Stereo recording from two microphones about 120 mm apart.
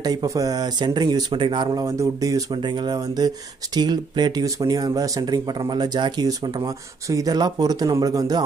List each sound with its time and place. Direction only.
0.0 s speech: 30° right (ahead or behind)
1.9 s speech: 25° right (ahead or behind)